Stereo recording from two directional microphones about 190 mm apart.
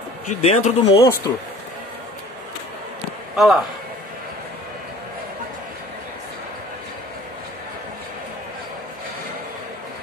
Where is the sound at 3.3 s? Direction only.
Centre (ahead or behind).